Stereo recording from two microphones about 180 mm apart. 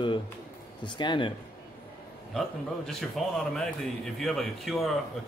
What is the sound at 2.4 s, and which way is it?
Speech, 5° left (ahead or behind).